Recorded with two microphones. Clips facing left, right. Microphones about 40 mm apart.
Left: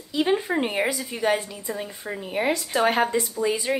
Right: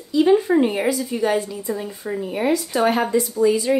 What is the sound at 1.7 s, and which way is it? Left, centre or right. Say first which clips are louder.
Speech: right 4 dB; centre.